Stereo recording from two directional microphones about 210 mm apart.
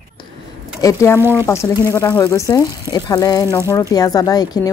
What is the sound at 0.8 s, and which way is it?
Speech, 15° left (ahead or behind).